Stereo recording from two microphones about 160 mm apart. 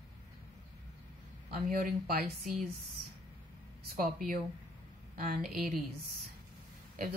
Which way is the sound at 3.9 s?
60° right (ahead or behind).